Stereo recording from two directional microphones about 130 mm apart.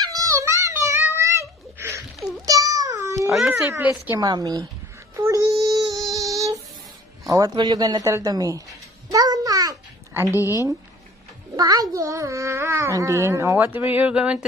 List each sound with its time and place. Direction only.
0.0 s a sound: 30° right (ahead or behind)
3.3 s baby cry: centre (ahead or behind)
3.5 s speech: 15° right (ahead or behind)
4.2 s a woman's voice: 30° right (ahead or behind)
5.1 s child singing: 25° right (ahead or behind)
7.2 s speech: 25° right (ahead or behind)
9.1 s babbling: 30° right (ahead or behind)
11.5 s speech: 30° right (ahead or behind); by 14.4 s 10° right (ahead or behind)